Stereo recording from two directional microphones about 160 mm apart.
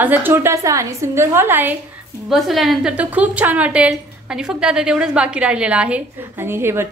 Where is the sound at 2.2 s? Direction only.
Centre (ahead or behind).